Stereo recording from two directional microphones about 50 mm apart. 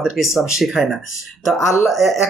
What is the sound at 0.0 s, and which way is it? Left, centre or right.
Speech, centre.